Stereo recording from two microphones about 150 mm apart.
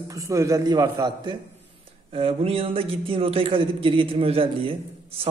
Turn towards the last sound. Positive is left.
turn(degrees=-40)  # may be behind; listen again after turning